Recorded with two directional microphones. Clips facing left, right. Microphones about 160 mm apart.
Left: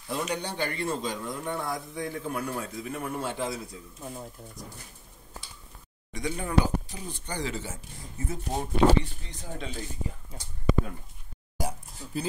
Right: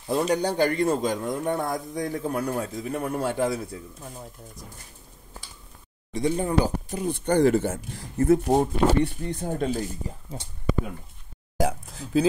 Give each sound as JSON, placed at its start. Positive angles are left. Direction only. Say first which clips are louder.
{"t": 0.1, "sound": "a man's voice", "louder": "right 8 dB", "side_deg": -40}
{"t": 4.0, "sound": "speech", "louder": "left 1 dB", "side_deg": 0}
{"t": 6.1, "sound": "speech", "louder": "right 4 dB", "side_deg": -30}
{"t": 6.9, "sound": "speech", "louder": "right 13 dB", "side_deg": -55}
{"t": 8.5, "sound": "a man's voice", "louder": "right 3 dB", "side_deg": -55}
{"t": 11.9, "sound": "a sound", "louder": "right 11 dB", "side_deg": -90}